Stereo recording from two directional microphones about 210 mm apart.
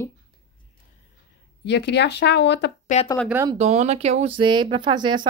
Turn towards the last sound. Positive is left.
turn(degrees=-20)  # may be behind; listen again after turning